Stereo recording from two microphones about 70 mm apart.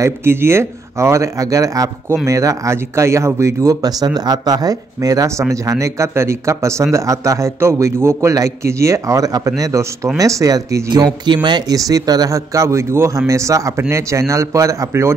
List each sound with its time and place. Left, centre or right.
0.0 s speech: right
3.8 s speech: right
5.4 s speech: right
11.2 s a man's voice: right